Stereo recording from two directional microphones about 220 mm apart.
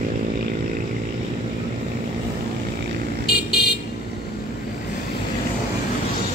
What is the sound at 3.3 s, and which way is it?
Vehicle, 45° left (ahead or behind).